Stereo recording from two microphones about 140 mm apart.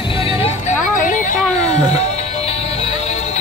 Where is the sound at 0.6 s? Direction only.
70° left (ahead or behind).